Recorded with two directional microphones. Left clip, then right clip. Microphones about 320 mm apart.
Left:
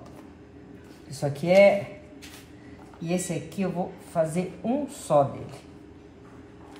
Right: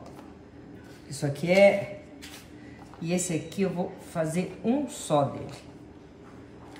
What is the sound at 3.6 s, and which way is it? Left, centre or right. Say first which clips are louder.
Speech: even; centre.